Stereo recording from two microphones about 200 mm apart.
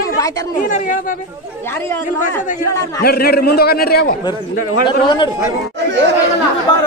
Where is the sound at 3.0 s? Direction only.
50° left (ahead or behind).